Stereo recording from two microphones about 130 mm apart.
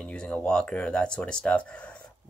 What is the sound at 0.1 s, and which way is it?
Speech, 10° left (ahead or behind).